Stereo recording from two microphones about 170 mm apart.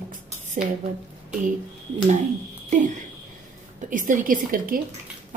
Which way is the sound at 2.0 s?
40° right (ahead or behind).